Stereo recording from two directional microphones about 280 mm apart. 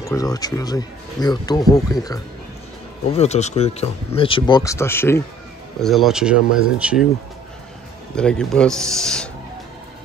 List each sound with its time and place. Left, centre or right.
0.0 s speech: centre
3.1 s speech: left; by 7.1 s centre
8.2 s speech: centre